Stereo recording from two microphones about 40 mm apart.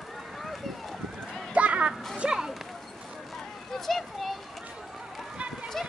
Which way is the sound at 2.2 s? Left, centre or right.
Right.